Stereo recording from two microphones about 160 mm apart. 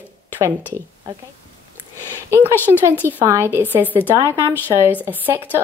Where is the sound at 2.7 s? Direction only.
35° right (ahead or behind).